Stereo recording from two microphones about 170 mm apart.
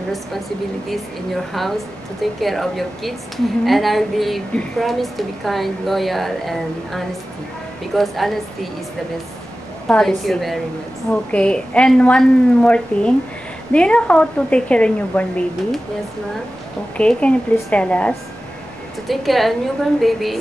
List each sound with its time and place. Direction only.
2.4 s a woman's voice: centre (ahead or behind)
9.8 s a woman's voice: 5° left (ahead or behind)
16.9 s a woman's voice: 5° left (ahead or behind)